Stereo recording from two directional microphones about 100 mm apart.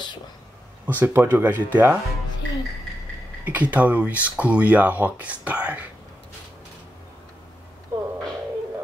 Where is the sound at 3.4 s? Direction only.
15° right (ahead or behind).